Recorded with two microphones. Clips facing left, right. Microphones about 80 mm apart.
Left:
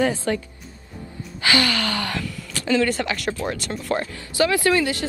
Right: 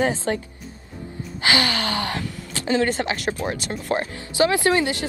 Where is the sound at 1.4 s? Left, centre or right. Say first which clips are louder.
Left 1 dB; right.